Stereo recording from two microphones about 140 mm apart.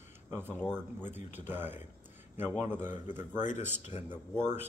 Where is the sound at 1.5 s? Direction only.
15° right (ahead or behind).